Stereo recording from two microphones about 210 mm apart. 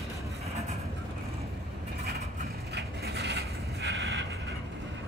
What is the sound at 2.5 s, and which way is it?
Vehicle, 50° right (ahead or behind).